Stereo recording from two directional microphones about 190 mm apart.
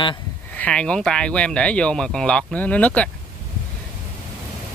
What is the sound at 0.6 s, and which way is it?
Speech, 5° left (ahead or behind).